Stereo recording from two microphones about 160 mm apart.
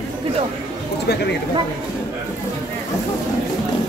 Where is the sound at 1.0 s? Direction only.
90° left.